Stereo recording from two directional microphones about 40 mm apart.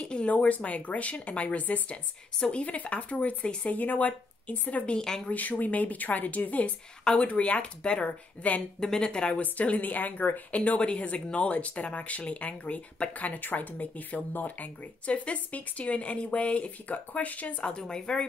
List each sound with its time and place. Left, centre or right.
0.0 s a sound: left
0.3 s speech: left
5.0 s speech: centre
5.3 s speech: left
8.7 s speech: centre
9.4 s speech: left
10.5 s speech: left
17.6 s speech: centre